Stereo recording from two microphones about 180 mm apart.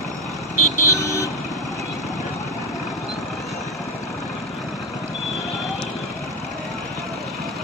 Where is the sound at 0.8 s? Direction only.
15° left (ahead or behind).